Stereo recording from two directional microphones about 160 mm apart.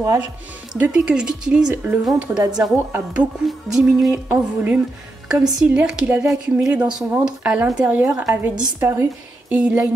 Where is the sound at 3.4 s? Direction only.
Centre (ahead or behind).